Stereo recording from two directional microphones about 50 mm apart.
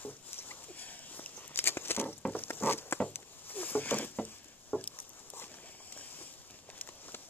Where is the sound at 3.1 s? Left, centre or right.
Left.